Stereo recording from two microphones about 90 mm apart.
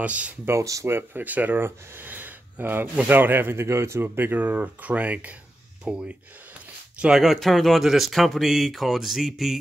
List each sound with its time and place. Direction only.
0.0 s speech: 15° right (ahead or behind)
0.5 s speech: 35° right (ahead or behind)
0.9 s speech: 20° right (ahead or behind); by 9.6 s 5° right (ahead or behind)